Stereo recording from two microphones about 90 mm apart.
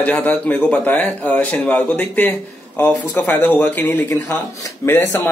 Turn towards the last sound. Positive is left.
turn(degrees=25)  # may be behind; listen again after turning